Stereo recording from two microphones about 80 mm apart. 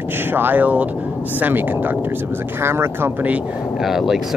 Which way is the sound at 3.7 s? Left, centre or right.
Centre.